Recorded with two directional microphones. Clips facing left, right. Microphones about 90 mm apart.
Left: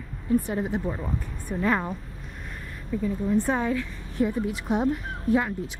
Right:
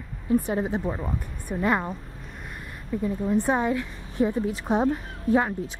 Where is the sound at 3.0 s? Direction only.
15° right (ahead or behind).